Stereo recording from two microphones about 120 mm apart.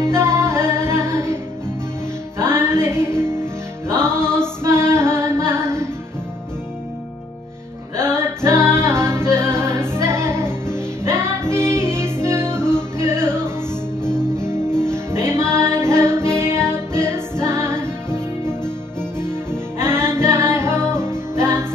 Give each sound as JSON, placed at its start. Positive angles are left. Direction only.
{"t": 0.0, "sound": "music", "side_deg": -20}
{"t": 4.6, "sound": "female singing", "side_deg": -20}
{"t": 7.9, "sound": "music", "side_deg": -20}
{"t": 14.0, "sound": "music", "side_deg": 5}
{"t": 14.8, "sound": "music", "side_deg": -20}